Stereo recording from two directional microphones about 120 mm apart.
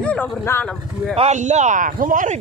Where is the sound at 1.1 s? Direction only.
65° right (ahead or behind); by 2.4 s 90° right.